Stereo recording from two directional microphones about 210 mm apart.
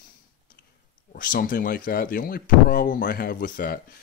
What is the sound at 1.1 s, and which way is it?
Speech, 40° left (ahead or behind).